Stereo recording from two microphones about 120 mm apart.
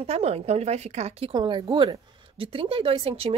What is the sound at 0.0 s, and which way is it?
Speech, 60° right (ahead or behind).